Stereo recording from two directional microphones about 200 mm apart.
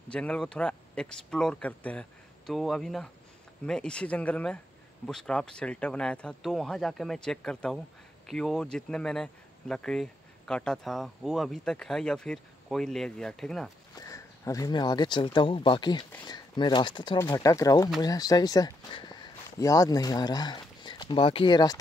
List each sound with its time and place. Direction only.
0.1 s speech: 5° left (ahead or behind)
13.9 s speech: 15° left (ahead or behind)